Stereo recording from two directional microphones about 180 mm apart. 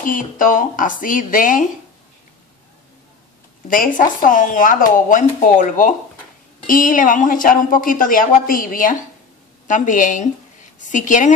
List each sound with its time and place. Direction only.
0.0 s a woman's voice: 50° left (ahead or behind)
3.6 s a woman's voice: 50° left (ahead or behind)